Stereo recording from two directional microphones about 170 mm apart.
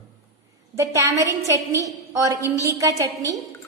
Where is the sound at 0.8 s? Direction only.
15° right (ahead or behind).